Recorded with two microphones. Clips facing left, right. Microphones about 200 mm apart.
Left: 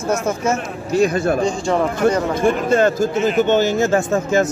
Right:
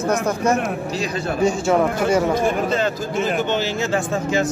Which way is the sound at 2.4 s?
50° left (ahead or behind).